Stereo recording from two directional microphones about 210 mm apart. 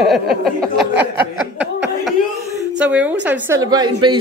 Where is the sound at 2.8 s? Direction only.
5° right (ahead or behind).